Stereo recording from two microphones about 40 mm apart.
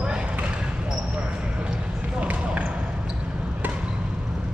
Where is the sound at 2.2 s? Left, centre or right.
Right.